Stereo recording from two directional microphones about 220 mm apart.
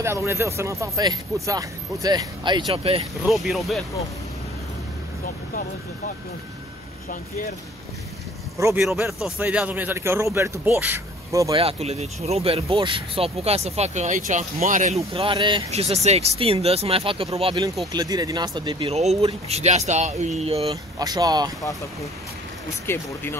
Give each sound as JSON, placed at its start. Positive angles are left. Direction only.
{"t": 0.0, "sound": "speech", "side_deg": -10}
{"t": 3.3, "sound": "speech", "side_deg": 0}
{"t": 8.5, "sound": "speech", "side_deg": -10}
{"t": 8.8, "sound": "speech", "side_deg": 0}
{"t": 11.6, "sound": "speech", "side_deg": -30}
{"t": 21.0, "sound": "speech", "side_deg": -15}
{"t": 22.8, "sound": "speech", "side_deg": 10}